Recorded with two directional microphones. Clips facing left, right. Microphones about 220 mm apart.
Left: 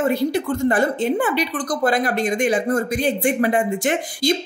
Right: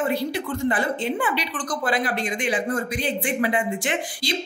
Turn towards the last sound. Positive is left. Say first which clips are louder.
# left 7 dB
turn(degrees=45)  # may be behind; listen again after turning